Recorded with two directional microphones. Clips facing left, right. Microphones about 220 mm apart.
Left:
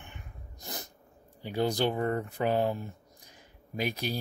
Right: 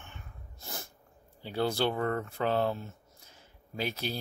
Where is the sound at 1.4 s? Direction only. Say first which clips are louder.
Left 1 dB; 15° left (ahead or behind).